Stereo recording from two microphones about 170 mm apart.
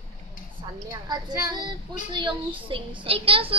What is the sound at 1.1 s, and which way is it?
Speech, 25° right (ahead or behind).